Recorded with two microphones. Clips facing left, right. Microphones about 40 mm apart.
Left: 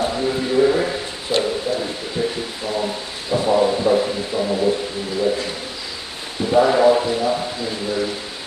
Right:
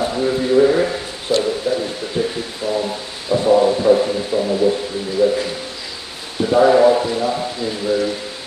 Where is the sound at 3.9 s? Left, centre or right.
Left.